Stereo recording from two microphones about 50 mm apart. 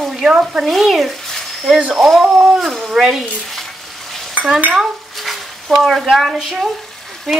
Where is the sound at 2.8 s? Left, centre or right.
Centre.